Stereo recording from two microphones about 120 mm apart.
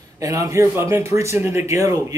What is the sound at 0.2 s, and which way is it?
A man's voice, 25° right (ahead or behind).